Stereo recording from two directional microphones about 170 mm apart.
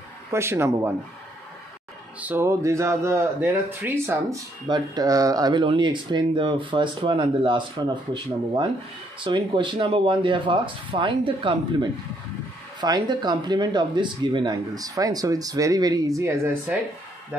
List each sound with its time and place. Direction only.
0.3 s speech: 15° right (ahead or behind)
2.1 s speech: 10° right (ahead or behind)
4.6 s speech: 25° right (ahead or behind)
12.8 s speech: 25° right (ahead or behind)